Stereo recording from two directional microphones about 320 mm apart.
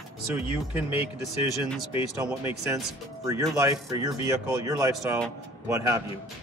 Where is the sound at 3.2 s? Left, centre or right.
Centre.